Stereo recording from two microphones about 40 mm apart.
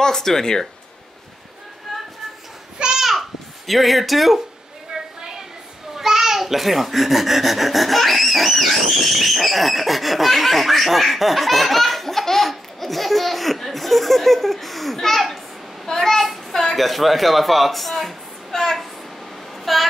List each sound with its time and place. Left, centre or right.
0.0 s speech: centre
1.9 s a sound: centre
4.9 s a sound: centre
5.9 s a child's voice: centre
15.9 s child singing: centre
16.5 s speech: centre